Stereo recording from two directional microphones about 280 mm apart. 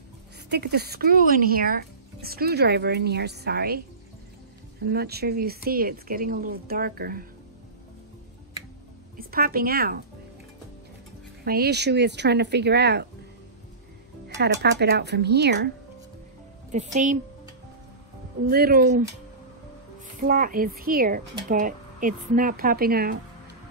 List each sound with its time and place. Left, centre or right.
0.5 s speech: right
4.8 s speech: right
9.1 s a woman's voice: right
11.4 s speech: right
14.3 s speech: right
16.7 s a woman's voice: right
18.5 s speech: right
20.2 s speech: right